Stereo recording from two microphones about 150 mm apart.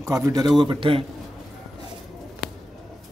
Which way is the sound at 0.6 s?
35° right (ahead or behind).